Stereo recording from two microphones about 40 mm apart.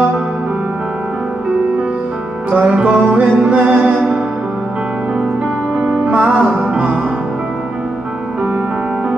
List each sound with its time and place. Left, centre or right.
2.5 s music: right
6.0 s music: right